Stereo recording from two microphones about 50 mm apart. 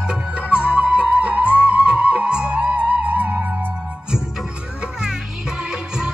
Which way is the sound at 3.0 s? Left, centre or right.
Right.